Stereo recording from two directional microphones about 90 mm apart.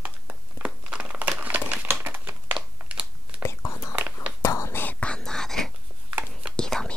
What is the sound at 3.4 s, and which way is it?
Whispering, 35° left (ahead or behind).